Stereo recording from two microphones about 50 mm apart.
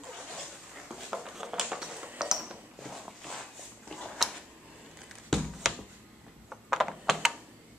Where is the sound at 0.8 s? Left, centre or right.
Centre.